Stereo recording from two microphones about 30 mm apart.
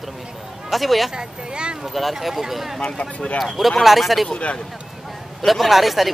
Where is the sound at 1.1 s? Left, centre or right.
Right.